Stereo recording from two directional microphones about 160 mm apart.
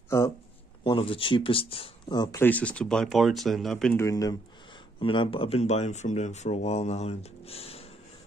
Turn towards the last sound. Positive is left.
turn(degrees=40)  # may be behind; listen again after turning